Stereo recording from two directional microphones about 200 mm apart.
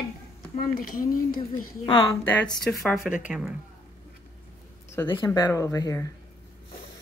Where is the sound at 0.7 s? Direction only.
45° left (ahead or behind).